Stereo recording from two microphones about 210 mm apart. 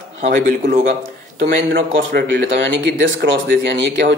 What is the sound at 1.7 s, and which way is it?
Speech, 60° right (ahead or behind).